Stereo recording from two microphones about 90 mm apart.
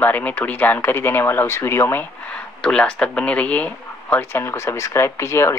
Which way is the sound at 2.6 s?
10° left (ahead or behind).